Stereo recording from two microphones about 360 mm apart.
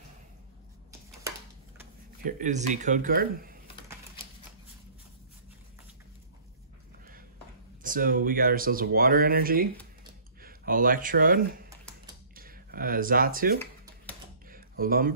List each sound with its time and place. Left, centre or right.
2.2 s speech: right
7.8 s speech: right
14.5 s a sound: right